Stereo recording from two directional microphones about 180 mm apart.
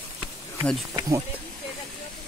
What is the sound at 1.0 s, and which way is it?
Speech, 15° right (ahead or behind).